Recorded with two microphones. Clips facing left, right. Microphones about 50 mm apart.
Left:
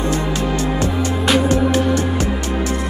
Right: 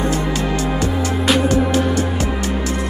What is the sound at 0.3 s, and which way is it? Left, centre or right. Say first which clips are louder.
Music: even; left.